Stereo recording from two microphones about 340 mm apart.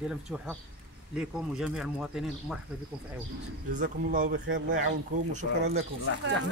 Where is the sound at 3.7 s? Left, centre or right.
Right.